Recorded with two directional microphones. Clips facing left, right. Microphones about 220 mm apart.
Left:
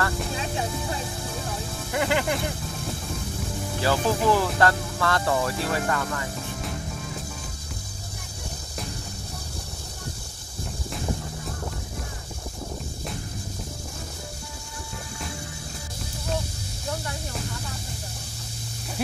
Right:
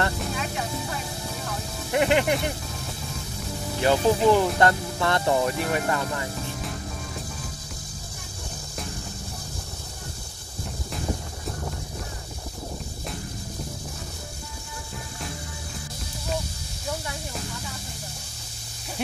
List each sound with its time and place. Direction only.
1.9 s speech: 20° right (ahead or behind)
3.8 s speech: 20° right (ahead or behind)